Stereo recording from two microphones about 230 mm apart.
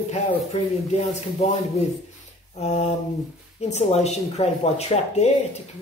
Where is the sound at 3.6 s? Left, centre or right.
Left.